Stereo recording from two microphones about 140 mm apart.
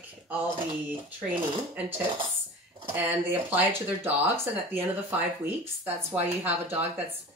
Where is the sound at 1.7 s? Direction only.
15° right (ahead or behind).